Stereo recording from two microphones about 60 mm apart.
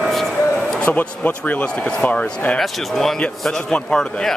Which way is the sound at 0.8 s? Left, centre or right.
Left.